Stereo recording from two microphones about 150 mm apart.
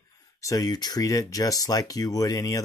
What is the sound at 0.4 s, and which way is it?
Speech, 20° left (ahead or behind).